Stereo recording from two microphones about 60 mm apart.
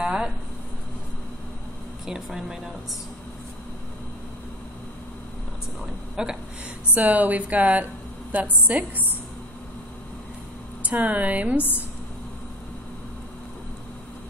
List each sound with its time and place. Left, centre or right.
0.0 s a sound: centre
2.0 s speech: centre
6.2 s speech: centre
6.9 s a woman's voice: right
10.8 s a woman's voice: right